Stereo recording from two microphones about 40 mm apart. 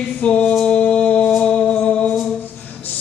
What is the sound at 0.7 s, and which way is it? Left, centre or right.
Music, left.